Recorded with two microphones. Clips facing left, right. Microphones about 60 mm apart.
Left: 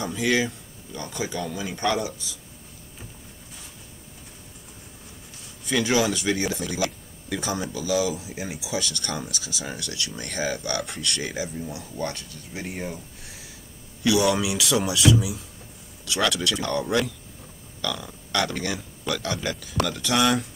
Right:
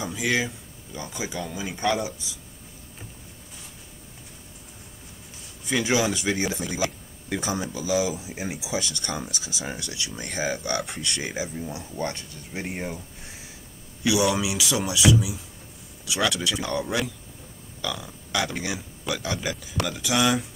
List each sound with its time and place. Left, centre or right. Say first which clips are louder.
0.0 s a man's voice: left 2 dB; centre
2.0 s speech: left 1 dB; right
5.7 s speech: left 1 dB; centre
14.2 s speech: left 1 dB; centre
16.1 s a man's voice: left 1 dB; centre